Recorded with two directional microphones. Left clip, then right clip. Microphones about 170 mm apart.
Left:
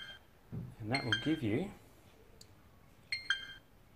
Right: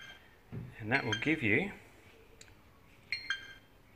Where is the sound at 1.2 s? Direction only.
5° left (ahead or behind).